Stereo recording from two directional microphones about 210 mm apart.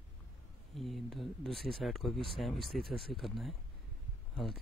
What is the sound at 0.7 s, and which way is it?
Speech, centre (ahead or behind).